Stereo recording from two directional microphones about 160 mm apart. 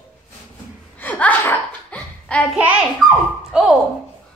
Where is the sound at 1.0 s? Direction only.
10° left (ahead or behind).